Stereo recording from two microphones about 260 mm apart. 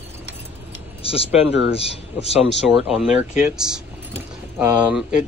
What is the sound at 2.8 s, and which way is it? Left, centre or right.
Speech, centre.